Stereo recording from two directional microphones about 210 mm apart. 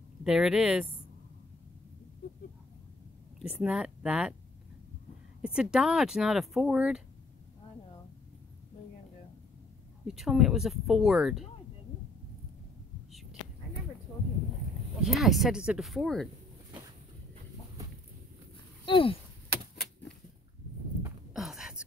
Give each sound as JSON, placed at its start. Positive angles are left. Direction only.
{"t": 0.2, "sound": "speech", "side_deg": -5}
{"t": 3.3, "sound": "speech", "side_deg": -5}
{"t": 5.4, "sound": "speech", "side_deg": -5}
{"t": 10.0, "sound": "speech", "side_deg": 0}
{"t": 15.0, "sound": "speech", "side_deg": 0}
{"t": 18.9, "sound": "chop", "side_deg": 25}
{"t": 21.0, "sound": "a sound", "side_deg": 0}